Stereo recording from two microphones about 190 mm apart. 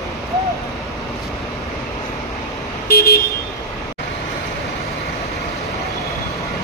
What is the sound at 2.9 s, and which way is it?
Vehicle, 55° left (ahead or behind).